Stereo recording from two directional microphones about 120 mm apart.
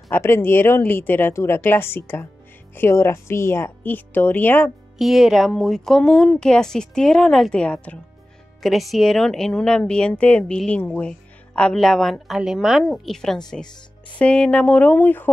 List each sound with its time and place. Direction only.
0.1 s a woman's voice: 20° left (ahead or behind)
4.9 s a woman's voice: centre (ahead or behind)
8.6 s a woman's voice: centre (ahead or behind); by 15.3 s 15° left (ahead or behind)